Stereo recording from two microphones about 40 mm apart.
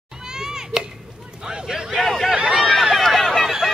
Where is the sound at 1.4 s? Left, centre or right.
Centre.